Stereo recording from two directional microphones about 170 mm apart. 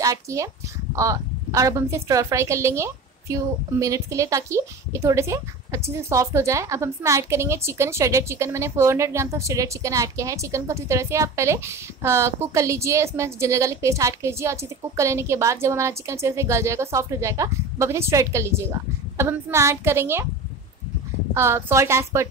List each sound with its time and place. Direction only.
0.0 s a woman's voice: 20° right (ahead or behind)
21.3 s a woman's voice: 15° right (ahead or behind)